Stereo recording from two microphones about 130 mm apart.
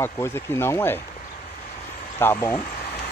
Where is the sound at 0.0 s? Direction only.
20° left (ahead or behind).